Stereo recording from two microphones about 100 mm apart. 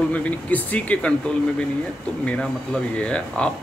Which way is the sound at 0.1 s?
15° left (ahead or behind).